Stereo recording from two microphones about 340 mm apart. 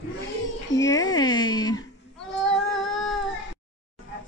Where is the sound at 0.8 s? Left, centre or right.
Centre.